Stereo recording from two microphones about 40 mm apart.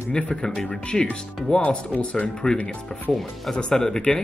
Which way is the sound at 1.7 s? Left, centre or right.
Left.